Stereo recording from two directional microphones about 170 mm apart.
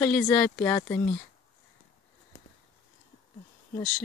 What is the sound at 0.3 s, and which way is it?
Speech, 15° left (ahead or behind).